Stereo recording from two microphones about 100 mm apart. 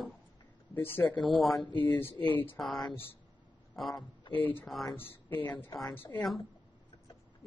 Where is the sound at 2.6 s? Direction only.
Centre (ahead or behind).